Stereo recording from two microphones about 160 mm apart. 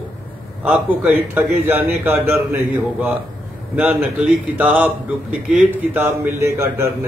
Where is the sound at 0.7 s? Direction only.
10° right (ahead or behind).